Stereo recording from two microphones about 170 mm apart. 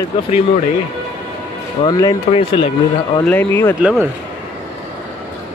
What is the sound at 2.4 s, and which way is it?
Speech, 30° left (ahead or behind).